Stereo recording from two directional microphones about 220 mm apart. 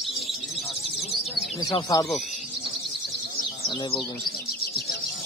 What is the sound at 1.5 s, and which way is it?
Speech, 20° left (ahead or behind).